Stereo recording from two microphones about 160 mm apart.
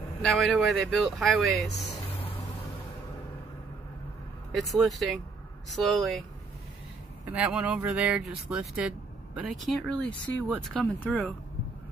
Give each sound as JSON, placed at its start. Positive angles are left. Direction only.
{"t": 0.2, "sound": "speech", "side_deg": 5}
{"t": 2.1, "sound": "vehicle", "side_deg": 35}
{"t": 4.8, "sound": "speech", "side_deg": 0}
{"t": 7.3, "sound": "speech", "side_deg": -5}